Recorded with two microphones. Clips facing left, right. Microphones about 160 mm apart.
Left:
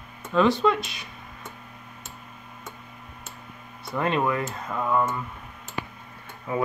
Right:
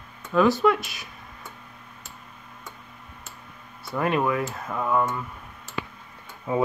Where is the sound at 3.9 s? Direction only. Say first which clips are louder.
Right 1 dB; 5° right (ahead or behind).